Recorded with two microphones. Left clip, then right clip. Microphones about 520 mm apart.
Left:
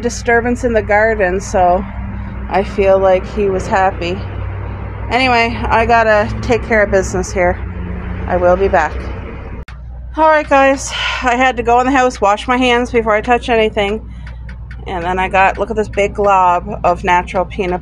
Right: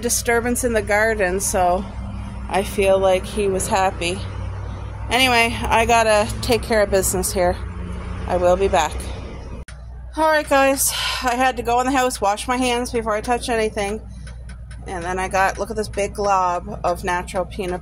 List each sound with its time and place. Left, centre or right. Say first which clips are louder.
0.0 s a woman's voice: left 6 dB; right
5.1 s a woman's voice: left 4 dB; right
10.1 s speech: left 6 dB; right